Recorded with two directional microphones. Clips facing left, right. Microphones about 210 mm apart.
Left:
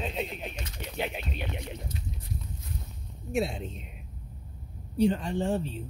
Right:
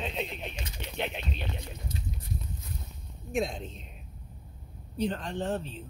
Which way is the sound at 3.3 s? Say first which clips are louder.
Left 1 dB; 5° left (ahead or behind).